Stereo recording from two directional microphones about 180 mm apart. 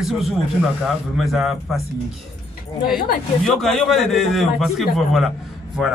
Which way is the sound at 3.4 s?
Centre (ahead or behind).